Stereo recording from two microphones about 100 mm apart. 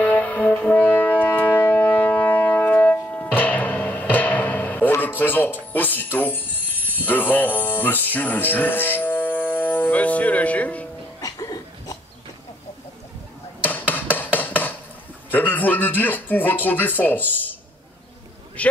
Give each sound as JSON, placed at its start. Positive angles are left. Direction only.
{"t": 0.0, "sound": "brass instrument", "side_deg": 15}
{"t": 5.7, "sound": "speech", "side_deg": 20}
{"t": 11.1, "sound": "a sound", "side_deg": 35}
{"t": 13.7, "sound": "hammer", "side_deg": 20}
{"t": 15.3, "sound": "speech", "side_deg": 15}
{"t": 18.6, "sound": "a man's voice", "side_deg": 15}